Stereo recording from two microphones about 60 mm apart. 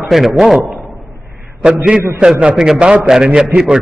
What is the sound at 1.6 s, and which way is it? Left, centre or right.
A man's voice, centre.